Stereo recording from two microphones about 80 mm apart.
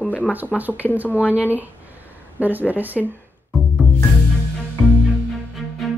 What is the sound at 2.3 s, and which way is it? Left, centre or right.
Speech, right.